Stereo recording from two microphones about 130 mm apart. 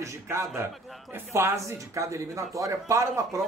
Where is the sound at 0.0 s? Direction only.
25° right (ahead or behind).